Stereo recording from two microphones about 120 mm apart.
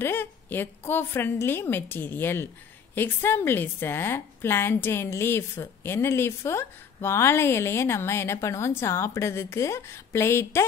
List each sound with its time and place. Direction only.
0.0 s a woman's voice: 15° left (ahead or behind)